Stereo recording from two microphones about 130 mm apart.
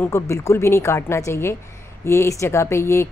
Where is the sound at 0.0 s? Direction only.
20° left (ahead or behind).